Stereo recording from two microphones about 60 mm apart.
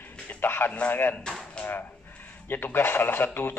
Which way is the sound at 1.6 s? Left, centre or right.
Centre.